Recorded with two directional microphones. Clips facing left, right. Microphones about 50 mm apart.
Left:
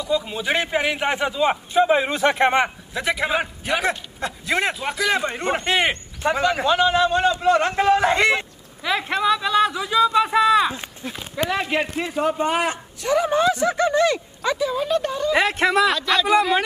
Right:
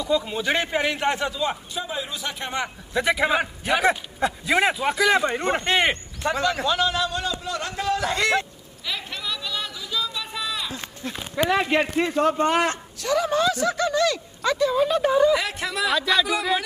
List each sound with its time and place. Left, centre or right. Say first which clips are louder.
0.0 s a man's voice: even; centre
1.4 s speech: left 9 dB; left
2.9 s a man's voice: right 1 dB; centre
6.2 s a man's voice: left 3 dB; centre
8.8 s a sound: left 11 dB; left
11.0 s a man's voice: even; centre
11.5 s a man's voice: right 3 dB; centre
13.0 s a man's voice: left 3 dB; left
14.5 s a man's voice: right 1 dB; centre
15.3 s speech: left 7 dB; left